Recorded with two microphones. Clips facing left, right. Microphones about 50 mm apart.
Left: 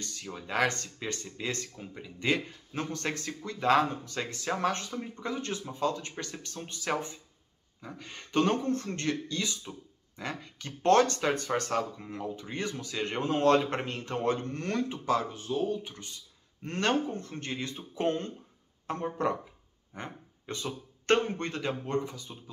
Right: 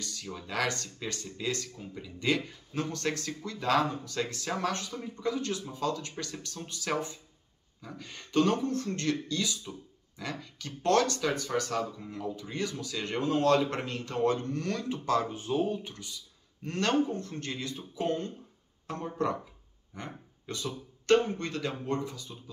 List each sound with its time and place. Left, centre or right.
0.0 s speech: left
15.3 s speech: right
16.6 s speech: left
17.9 s speech: left
18.9 s speech: left
21.5 s speech: left